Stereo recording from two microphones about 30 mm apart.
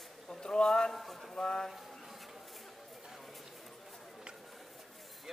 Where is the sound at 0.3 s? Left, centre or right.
Left.